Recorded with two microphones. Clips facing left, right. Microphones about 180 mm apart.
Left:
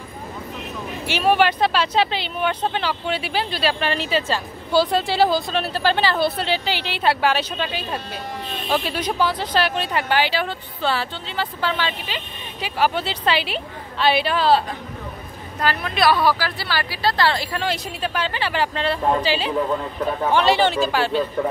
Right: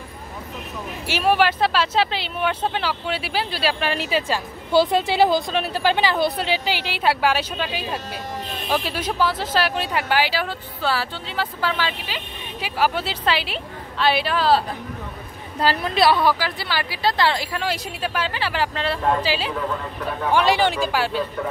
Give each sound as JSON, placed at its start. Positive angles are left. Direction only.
{"t": 1.0, "sound": "speech", "side_deg": -5}
{"t": 15.6, "sound": "a woman's voice", "side_deg": -35}
{"t": 16.3, "sound": "speech", "side_deg": -20}